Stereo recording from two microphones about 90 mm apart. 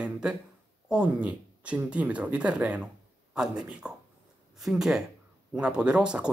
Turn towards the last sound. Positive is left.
turn(degrees=-10)  # may be behind; listen again after turning